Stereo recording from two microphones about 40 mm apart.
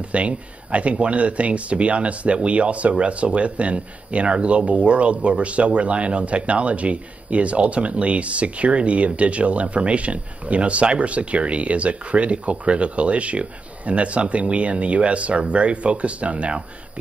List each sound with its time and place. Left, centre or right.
0.1 s speech: right